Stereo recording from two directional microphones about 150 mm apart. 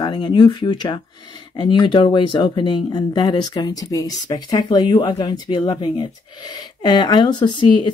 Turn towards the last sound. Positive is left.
turn(degrees=30)  # may be behind; listen again after turning